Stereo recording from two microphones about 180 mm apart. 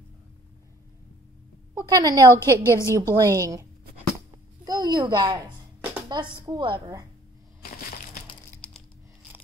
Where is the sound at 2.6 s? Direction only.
15° left (ahead or behind).